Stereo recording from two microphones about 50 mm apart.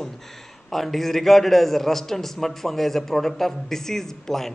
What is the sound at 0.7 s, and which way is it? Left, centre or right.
A man's voice, centre.